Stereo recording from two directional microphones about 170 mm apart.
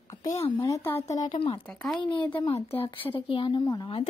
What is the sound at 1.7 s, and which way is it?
Speech, 5° left (ahead or behind).